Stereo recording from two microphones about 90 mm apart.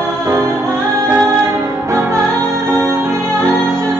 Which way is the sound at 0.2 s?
35° right (ahead or behind).